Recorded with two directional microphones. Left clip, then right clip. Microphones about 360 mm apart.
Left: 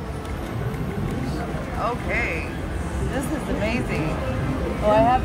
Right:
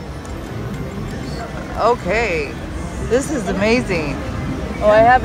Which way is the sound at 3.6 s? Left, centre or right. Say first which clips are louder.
Right 12 dB; centre.